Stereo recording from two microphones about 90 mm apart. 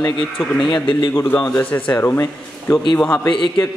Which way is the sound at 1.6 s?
20° left (ahead or behind).